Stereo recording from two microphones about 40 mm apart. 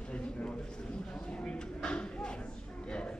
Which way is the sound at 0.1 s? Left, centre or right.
Left.